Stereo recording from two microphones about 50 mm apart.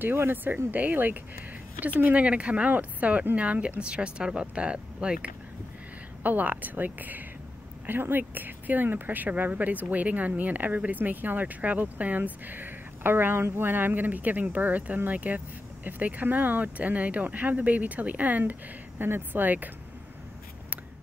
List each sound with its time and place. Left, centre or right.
0.0 s speech: right
2.1 s speech: right
6.2 s speech: right
18.4 s speech: right